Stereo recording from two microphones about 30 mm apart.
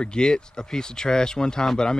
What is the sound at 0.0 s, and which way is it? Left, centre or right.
A man's voice, left.